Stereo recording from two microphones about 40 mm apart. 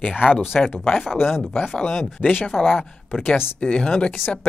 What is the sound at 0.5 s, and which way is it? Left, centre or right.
Speech, centre.